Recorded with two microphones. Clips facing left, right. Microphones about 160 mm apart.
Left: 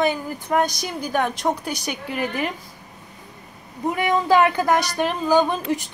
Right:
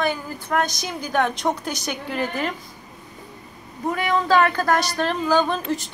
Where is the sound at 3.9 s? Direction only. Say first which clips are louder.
Left 1 dB; 15° left (ahead or behind).